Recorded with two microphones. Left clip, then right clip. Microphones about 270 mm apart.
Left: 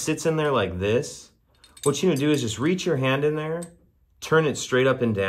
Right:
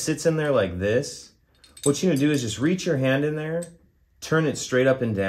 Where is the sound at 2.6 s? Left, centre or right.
Left.